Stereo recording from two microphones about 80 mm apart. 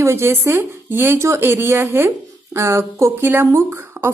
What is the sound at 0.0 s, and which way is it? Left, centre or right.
Speech, right.